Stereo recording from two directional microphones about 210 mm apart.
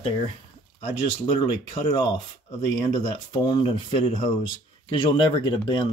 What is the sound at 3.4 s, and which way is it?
Speech, 20° left (ahead or behind).